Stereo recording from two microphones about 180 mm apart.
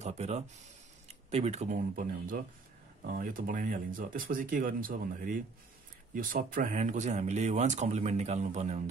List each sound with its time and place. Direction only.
0.0 s speech: 35° right (ahead or behind)